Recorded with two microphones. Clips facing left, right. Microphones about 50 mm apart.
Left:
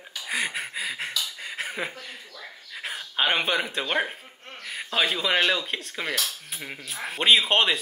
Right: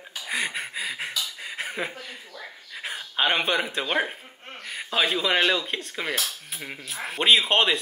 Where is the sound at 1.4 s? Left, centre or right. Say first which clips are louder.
Even; centre.